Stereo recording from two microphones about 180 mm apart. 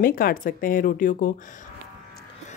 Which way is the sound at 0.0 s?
50° left (ahead or behind).